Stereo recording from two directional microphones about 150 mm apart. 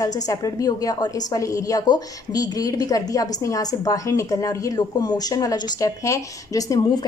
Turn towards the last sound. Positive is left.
turn(degrees=25)  # may be behind; listen again after turning